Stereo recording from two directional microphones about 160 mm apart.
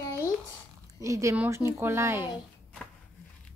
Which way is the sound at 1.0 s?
20° right (ahead or behind).